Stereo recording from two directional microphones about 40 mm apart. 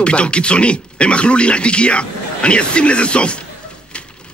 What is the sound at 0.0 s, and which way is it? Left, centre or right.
Speech, left.